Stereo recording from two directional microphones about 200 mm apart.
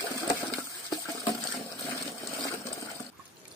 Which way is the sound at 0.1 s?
15° left (ahead or behind).